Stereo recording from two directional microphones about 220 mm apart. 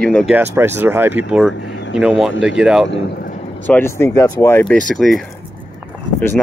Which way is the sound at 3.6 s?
10° left (ahead or behind).